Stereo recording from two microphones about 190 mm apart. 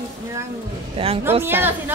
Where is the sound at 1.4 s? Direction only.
10° right (ahead or behind).